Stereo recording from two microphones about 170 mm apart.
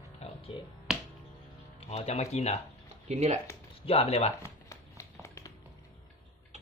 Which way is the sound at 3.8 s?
35° left (ahead or behind).